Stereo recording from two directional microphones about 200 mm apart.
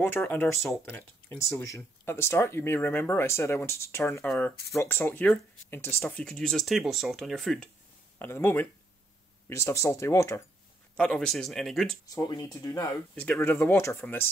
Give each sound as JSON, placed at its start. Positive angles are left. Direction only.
{"t": 0.0, "sound": "speech", "side_deg": 10}
{"t": 11.0, "sound": "speech", "side_deg": 0}
{"t": 12.1, "sound": "speech", "side_deg": 20}
{"t": 13.1, "sound": "speech", "side_deg": 5}